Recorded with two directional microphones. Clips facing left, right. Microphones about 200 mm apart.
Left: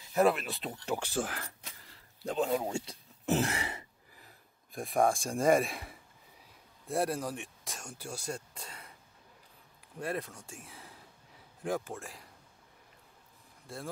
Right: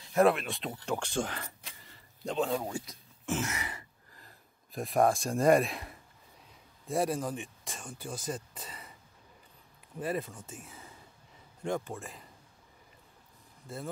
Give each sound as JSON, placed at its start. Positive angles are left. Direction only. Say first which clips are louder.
{"t": 0.1, "sound": "speech", "louder": "right 2 dB", "side_deg": 0}
{"t": 2.5, "sound": "speech", "louder": "left 2 dB", "side_deg": 15}
{"t": 2.8, "sound": "speech", "louder": "left 3 dB", "side_deg": 30}
{"t": 4.1, "sound": "speech", "louder": "right 1 dB", "side_deg": 5}
{"t": 9.9, "sound": "speech", "louder": "right 2 dB", "side_deg": 0}